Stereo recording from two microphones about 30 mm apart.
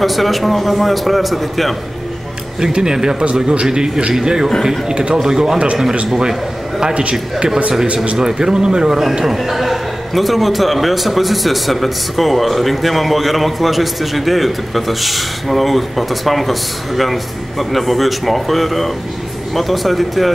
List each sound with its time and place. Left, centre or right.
0.0 s a man's voice: centre
2.6 s speech: right
6.9 s a man's voice: right
8.2 s speech: right
9.2 s a man's voice: centre